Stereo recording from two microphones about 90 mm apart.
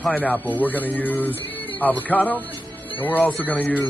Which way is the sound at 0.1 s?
15° left (ahead or behind).